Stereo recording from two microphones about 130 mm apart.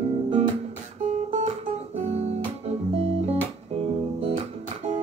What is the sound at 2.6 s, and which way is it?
Music, 50° right (ahead or behind).